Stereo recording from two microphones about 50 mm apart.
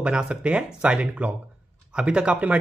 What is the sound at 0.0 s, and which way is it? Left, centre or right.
Speech, centre.